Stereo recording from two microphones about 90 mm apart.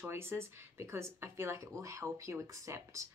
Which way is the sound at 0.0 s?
25° right (ahead or behind).